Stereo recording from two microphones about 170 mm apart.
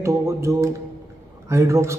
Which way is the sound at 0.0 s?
15° right (ahead or behind).